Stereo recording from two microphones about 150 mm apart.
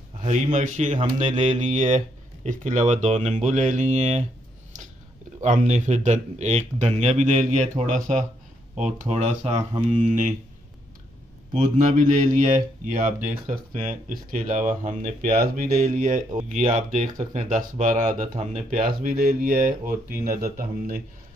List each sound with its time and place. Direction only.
0.2 s speech: 50° right (ahead or behind)
0.9 s speech: 40° right (ahead or behind)
1.4 s speech: 50° right (ahead or behind)
5.4 s speech: 50° right (ahead or behind)
11.6 s speech: 60° right (ahead or behind)
18.2 s speech: 45° right (ahead or behind); by 21.0 s 70° right (ahead or behind)